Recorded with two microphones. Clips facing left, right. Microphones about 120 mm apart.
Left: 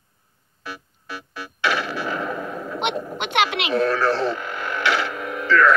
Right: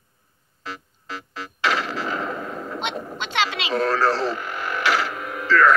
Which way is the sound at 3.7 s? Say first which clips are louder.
Even; 35° right (ahead or behind).